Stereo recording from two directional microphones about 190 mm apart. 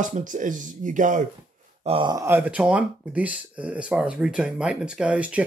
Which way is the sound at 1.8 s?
25° right (ahead or behind).